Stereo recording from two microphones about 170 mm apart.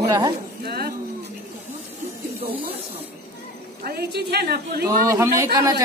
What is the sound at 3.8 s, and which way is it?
Speech, 70° right (ahead or behind).